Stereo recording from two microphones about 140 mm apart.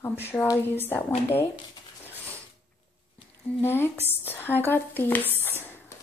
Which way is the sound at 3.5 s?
15° left (ahead or behind).